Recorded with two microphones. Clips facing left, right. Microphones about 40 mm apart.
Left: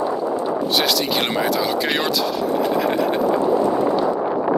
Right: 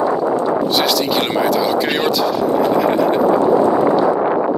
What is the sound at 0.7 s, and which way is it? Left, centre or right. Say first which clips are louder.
Speech: right 3 dB; centre.